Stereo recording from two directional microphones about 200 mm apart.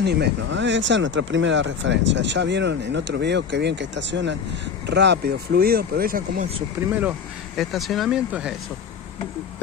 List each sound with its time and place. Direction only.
0.0 s speech: 55° right (ahead or behind)
7.0 s speech: 5° right (ahead or behind)